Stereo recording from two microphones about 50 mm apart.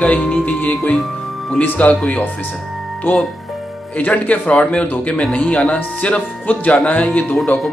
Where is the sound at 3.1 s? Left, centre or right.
Left.